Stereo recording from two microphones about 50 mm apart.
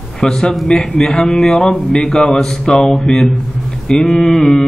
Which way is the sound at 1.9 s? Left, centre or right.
Centre.